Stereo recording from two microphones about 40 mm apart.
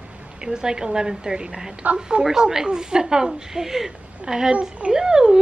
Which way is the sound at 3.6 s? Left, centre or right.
Centre.